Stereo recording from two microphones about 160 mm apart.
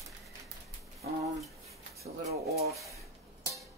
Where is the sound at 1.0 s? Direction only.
75° right (ahead or behind).